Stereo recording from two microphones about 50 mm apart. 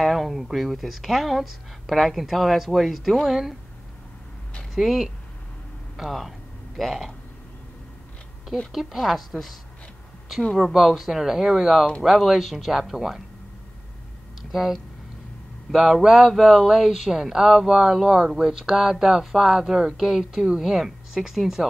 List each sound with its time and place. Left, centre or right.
0.0 s speech: centre
4.7 s speech: centre
8.7 s speech: centre
10.6 s speech: centre
14.4 s speech: centre